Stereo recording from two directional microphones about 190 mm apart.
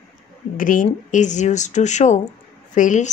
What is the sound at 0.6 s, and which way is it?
A woman's voice, 45° left (ahead or behind).